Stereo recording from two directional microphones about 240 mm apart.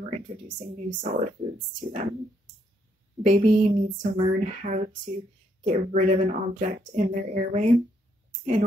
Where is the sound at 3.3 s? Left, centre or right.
Right.